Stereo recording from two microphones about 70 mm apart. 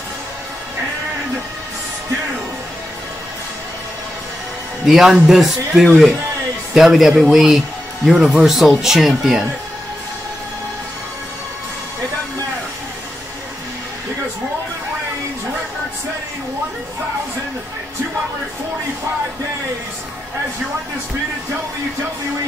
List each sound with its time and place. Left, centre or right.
4.8 s speech: centre